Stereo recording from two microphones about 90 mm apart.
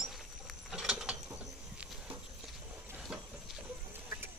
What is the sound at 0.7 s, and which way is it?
Mechanisms, 5° right (ahead or behind).